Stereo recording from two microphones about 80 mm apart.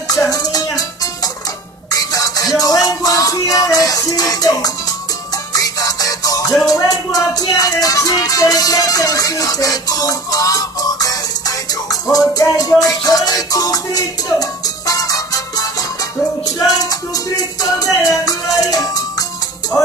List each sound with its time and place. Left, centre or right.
0.1 s music: left